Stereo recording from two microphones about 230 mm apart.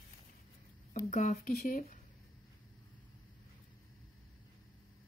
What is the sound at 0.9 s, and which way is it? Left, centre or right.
Speech, left.